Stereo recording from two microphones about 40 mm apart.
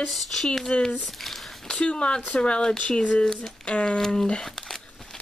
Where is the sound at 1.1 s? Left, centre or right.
Centre.